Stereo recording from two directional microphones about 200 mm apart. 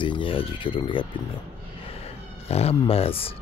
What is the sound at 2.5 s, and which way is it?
Speech, 30° left (ahead or behind).